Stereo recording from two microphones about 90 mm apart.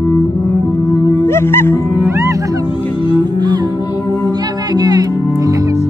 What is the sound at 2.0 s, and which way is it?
Music, 30° right (ahead or behind).